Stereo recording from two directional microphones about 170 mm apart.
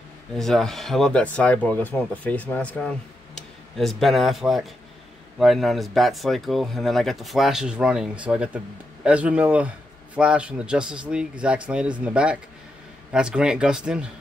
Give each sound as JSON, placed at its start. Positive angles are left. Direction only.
{"t": 0.4, "sound": "a man's voice", "side_deg": 0}